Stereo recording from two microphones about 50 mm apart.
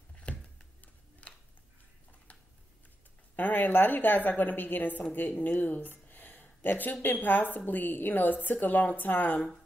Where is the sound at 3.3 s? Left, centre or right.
Left.